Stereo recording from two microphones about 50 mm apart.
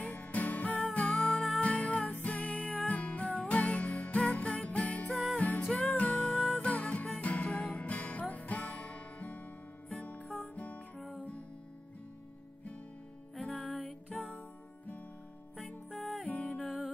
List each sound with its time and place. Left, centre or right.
0.0 s music: left
1.3 s music: centre
1.6 s music: left
6.3 s music: centre
6.6 s music: left
13.6 s music: left
15.6 s music: centre
16.3 s music: centre